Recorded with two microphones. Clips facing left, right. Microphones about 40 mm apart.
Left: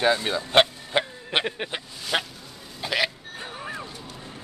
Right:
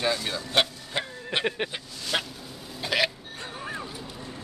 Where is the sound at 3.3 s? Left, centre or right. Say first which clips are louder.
Left 1 dB; centre.